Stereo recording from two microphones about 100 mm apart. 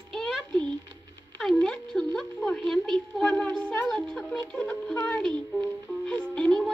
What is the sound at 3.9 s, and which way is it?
Music, 5° left (ahead or behind).